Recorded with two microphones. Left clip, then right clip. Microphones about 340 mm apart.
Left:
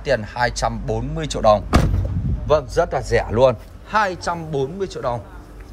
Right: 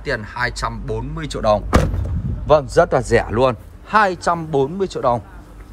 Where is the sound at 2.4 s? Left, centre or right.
Centre.